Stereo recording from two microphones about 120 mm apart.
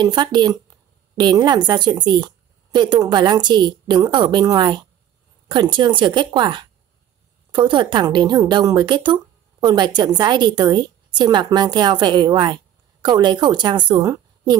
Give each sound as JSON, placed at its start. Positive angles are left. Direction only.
{"t": 0.0, "sound": "a woman's voice", "side_deg": -35}